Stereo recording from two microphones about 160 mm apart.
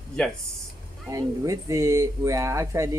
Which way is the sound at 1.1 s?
20° right (ahead or behind).